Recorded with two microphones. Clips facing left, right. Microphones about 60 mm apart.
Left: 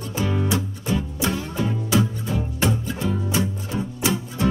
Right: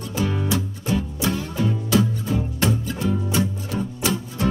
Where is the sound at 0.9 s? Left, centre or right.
Centre.